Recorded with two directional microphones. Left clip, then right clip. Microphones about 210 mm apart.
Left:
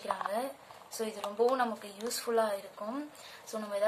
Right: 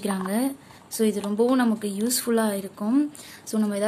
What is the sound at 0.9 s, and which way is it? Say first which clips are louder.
A woman's voice: right 11 dB; 45° right (ahead or behind).